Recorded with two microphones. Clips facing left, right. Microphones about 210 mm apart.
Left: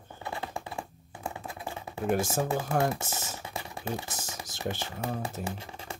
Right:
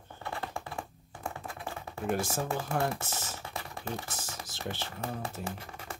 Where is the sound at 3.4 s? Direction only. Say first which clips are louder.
Left 3 dB; 15° left (ahead or behind).